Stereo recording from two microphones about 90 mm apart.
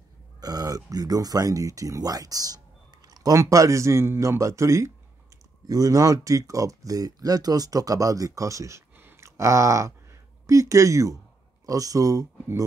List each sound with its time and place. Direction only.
0.4 s speech: 45° right (ahead or behind)